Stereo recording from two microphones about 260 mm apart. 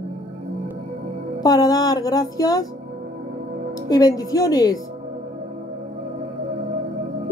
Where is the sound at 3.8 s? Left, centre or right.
Centre.